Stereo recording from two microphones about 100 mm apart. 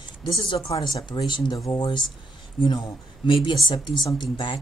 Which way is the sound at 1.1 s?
50° left (ahead or behind).